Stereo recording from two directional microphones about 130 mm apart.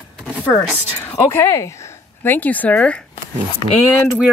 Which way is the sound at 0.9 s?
15° left (ahead or behind).